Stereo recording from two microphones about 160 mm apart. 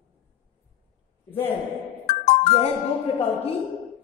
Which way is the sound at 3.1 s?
40° left (ahead or behind).